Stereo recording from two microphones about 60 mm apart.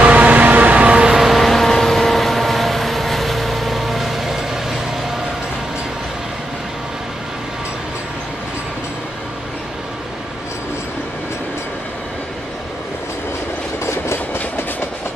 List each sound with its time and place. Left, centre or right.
0.0 s vehicle: right; by 4.7 s centre
13.8 s train: left